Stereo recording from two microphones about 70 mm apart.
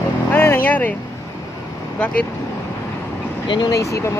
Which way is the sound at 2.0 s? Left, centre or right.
Centre.